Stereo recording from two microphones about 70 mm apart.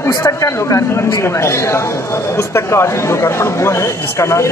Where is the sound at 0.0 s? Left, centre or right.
Left.